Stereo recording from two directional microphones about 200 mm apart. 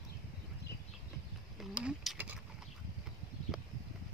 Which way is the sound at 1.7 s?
5° right (ahead or behind).